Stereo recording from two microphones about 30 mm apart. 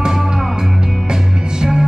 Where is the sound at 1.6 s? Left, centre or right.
Centre.